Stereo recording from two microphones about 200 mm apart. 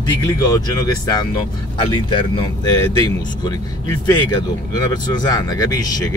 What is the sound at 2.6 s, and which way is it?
Speech, 20° left (ahead or behind).